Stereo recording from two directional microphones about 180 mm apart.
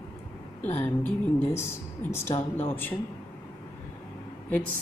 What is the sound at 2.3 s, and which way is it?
Speech, 25° left (ahead or behind).